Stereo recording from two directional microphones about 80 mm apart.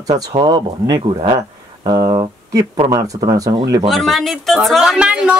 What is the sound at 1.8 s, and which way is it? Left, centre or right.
Speech, right.